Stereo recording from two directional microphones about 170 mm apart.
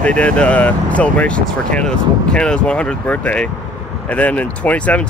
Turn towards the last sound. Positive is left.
turn(degrees=10)  # may be behind; listen again after turning